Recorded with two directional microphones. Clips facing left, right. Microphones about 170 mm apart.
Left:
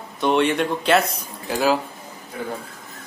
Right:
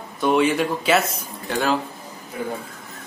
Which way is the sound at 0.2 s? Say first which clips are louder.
Even; centre (ahead or behind).